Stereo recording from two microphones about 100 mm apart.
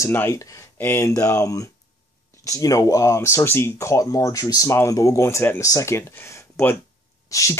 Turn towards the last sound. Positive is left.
turn(degrees=35)  # may be behind; listen again after turning